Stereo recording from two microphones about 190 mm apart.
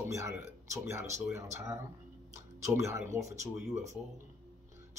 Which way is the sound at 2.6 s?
15° right (ahead or behind).